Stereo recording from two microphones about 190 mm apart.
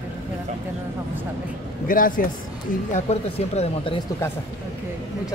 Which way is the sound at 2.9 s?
35° left (ahead or behind).